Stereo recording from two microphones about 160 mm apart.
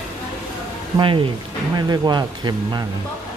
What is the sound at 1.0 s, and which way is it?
Speech, 30° right (ahead or behind).